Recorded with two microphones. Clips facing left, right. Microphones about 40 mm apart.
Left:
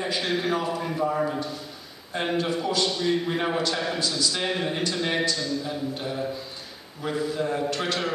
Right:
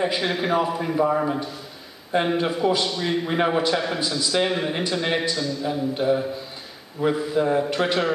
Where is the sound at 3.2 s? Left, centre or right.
Right.